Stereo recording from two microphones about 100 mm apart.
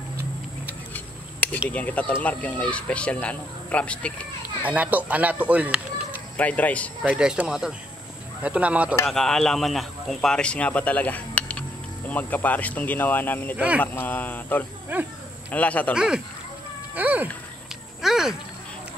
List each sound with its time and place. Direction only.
0.9 s a sound: 15° left (ahead or behind)
1.7 s speech: 15° left (ahead or behind)
4.6 s speech: 15° right (ahead or behind)
6.3 s speech: 15° left (ahead or behind)
7.1 s speech: 10° right (ahead or behind)
9.0 s speech: 5° left (ahead or behind)
14.9 s speech: 20° right (ahead or behind)
15.5 s speech: 15° left (ahead or behind)
15.9 s speech: 5° right (ahead or behind)
16.9 s speech: 15° right (ahead or behind)
18.0 s speech: 5° right (ahead or behind)